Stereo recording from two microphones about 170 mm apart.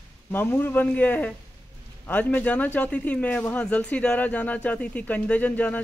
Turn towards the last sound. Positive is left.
turn(degrees=10)  # may be behind; listen again after turning